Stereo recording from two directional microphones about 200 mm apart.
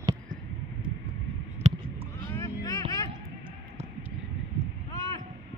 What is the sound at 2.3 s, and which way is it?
Vehicle, 15° left (ahead or behind).